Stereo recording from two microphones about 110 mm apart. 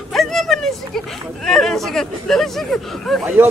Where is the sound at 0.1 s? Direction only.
Centre (ahead or behind).